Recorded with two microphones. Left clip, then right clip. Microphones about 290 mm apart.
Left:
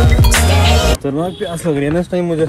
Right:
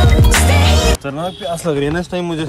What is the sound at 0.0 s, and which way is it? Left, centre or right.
Music, centre.